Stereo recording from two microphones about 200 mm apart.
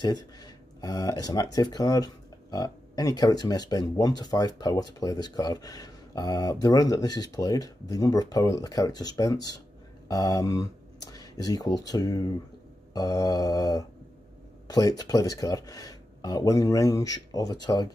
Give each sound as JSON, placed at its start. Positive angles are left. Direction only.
{"t": 0.0, "sound": "speech", "side_deg": 20}